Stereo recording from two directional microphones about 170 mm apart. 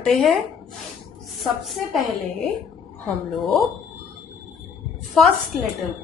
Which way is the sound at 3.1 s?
Centre (ahead or behind).